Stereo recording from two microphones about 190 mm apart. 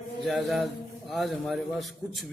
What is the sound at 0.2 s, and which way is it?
A man's voice, centre (ahead or behind).